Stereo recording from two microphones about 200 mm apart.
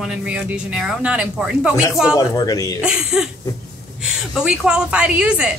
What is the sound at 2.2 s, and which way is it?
Speech, 15° left (ahead or behind).